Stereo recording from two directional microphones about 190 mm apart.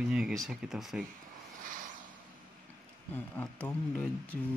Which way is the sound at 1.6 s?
45° right (ahead or behind).